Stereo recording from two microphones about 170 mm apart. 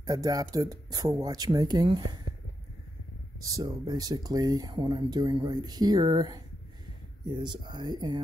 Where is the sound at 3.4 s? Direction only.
20° right (ahead or behind).